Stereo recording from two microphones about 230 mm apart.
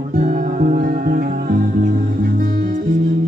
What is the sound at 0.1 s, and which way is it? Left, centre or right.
Music, right.